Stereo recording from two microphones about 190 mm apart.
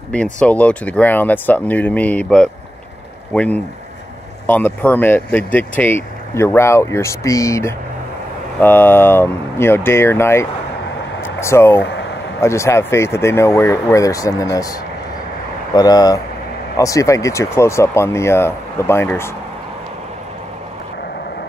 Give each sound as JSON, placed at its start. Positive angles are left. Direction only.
{"t": 0.1, "sound": "speech", "side_deg": 5}
{"t": 15.7, "sound": "speech", "side_deg": 20}